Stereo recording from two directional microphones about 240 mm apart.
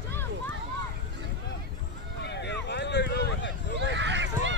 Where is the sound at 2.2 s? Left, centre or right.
Left.